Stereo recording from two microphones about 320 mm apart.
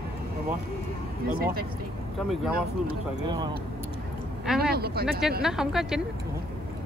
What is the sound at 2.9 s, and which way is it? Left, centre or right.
Speech, centre.